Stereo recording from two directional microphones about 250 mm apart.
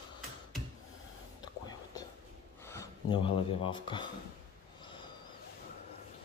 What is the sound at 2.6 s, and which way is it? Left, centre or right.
Speech, centre.